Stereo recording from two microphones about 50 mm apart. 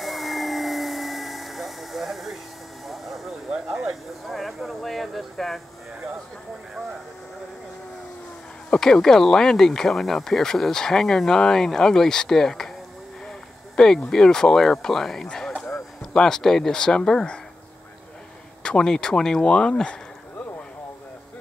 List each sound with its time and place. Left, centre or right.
0.0 s vacuum cleaner: centre
2.9 s vehicle: centre
3.4 s a sound: centre
4.3 s speech: centre
8.7 s speech: centre
13.7 s speech: centre
18.6 s speech: centre